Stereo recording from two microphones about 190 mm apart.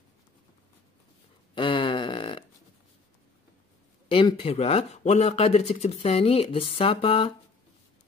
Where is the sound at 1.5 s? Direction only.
25° left (ahead or behind).